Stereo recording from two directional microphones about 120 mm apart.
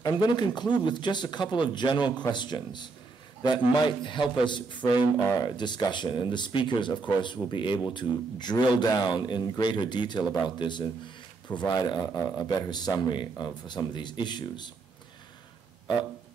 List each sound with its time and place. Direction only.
0.0 s speech: 35° left (ahead or behind)